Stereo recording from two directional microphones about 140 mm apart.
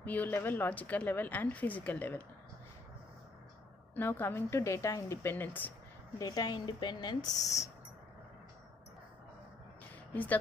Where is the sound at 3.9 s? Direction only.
15° left (ahead or behind).